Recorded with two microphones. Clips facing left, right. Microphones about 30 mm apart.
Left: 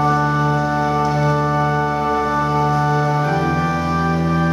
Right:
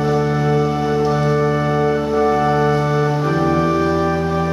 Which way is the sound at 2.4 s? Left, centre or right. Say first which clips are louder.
Right 2 dB; centre.